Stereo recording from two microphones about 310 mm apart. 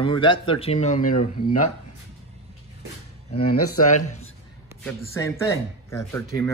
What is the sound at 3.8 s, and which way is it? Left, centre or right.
Speech, left.